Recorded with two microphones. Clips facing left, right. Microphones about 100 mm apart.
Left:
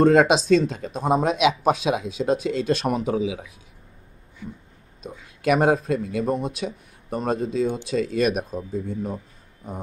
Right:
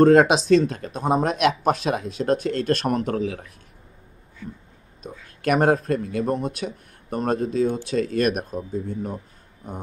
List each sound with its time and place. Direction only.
0.0 s speech: centre (ahead or behind)
4.4 s a sound: 15° left (ahead or behind)
5.2 s speech: centre (ahead or behind)